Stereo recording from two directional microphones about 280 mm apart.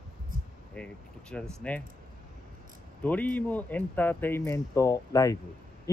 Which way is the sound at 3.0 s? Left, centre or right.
Centre.